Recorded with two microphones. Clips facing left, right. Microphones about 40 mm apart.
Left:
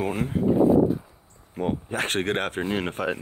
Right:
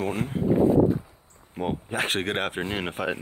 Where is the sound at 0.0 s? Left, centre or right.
Centre.